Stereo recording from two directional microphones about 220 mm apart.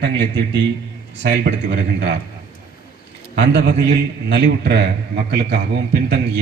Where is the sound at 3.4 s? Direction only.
50° right (ahead or behind).